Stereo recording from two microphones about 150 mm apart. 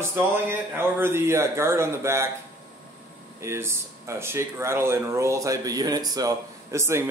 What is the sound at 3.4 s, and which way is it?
Speech, 20° right (ahead or behind).